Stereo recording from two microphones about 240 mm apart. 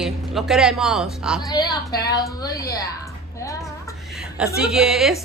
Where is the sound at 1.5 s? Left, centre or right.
Centre.